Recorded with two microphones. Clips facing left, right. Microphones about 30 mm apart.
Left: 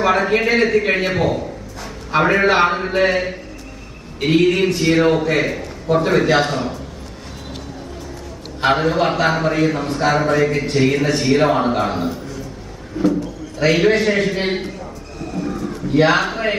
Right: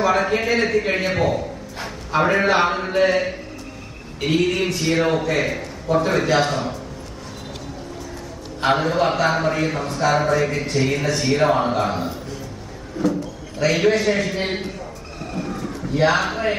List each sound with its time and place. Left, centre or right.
0.4 s a man's voice: centre
1.1 s a man's voice: centre
2.0 s a man's voice: centre
8.5 s a man's voice: centre
15.4 s a sound: centre
15.9 s a man's voice: centre
16.2 s a man's voice: centre